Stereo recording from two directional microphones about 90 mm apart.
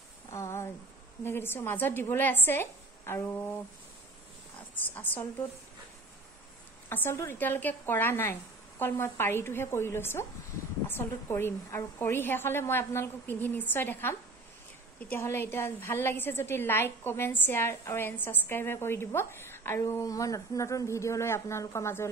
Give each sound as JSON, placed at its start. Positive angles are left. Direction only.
{"t": 0.3, "sound": "a sound", "side_deg": 30}
{"t": 1.2, "sound": "a woman's voice", "side_deg": 25}
{"t": 4.7, "sound": "a woman's voice", "side_deg": 20}
{"t": 6.9, "sound": "a woman's voice", "side_deg": 25}
{"t": 15.1, "sound": "a woman's voice", "side_deg": 25}
{"t": 19.8, "sound": "speech", "side_deg": 40}